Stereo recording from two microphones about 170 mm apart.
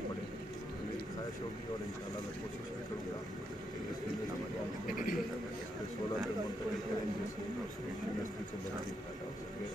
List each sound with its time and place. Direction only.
4.8 s a man's voice: 55° left (ahead or behind)